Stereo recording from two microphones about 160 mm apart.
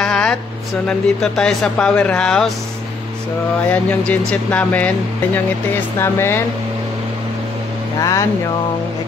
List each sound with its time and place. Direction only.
0.0 s a sound: 5° left (ahead or behind)
0.8 s speech: 5° left (ahead or behind)
3.6 s speech: 10° left (ahead or behind)
8.0 s speech: 20° left (ahead or behind)